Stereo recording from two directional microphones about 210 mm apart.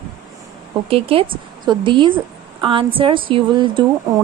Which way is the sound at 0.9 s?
25° right (ahead or behind).